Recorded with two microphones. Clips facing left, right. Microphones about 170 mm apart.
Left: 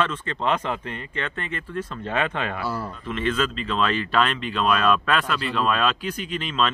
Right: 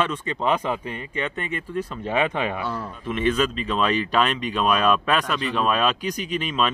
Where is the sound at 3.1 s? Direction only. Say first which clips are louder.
Right 3 dB; 15° right (ahead or behind).